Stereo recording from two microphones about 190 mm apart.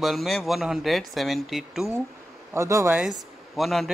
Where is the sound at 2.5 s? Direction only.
15° right (ahead or behind).